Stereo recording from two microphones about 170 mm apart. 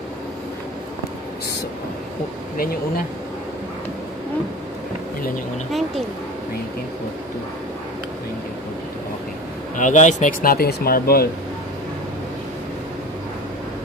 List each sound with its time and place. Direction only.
5.7 s speech: centre (ahead or behind)
9.8 s speech: 45° left (ahead or behind); by 11.2 s 65° left (ahead or behind)